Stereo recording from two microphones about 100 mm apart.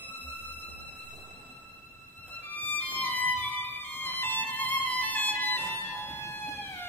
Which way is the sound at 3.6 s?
20° left (ahead or behind).